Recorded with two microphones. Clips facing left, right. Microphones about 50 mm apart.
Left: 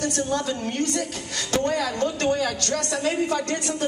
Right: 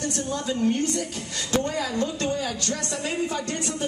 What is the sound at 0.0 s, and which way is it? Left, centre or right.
A woman's voice, left.